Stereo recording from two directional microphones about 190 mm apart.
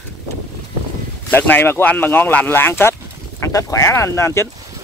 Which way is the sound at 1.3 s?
10° left (ahead or behind).